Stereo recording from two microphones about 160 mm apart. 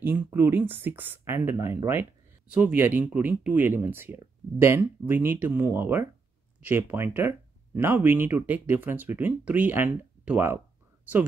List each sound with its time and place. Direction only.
0.0 s speech: 15° right (ahead or behind)